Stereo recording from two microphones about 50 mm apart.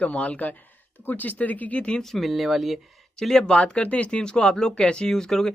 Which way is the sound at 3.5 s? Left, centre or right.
Left.